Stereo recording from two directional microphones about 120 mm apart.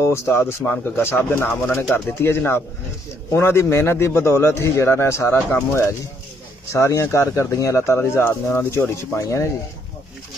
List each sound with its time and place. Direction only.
0.0 s a man's voice: 20° left (ahead or behind)